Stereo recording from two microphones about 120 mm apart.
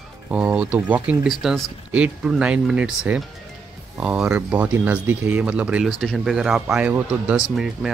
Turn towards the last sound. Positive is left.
turn(degrees=-10)  # may be behind; listen again after turning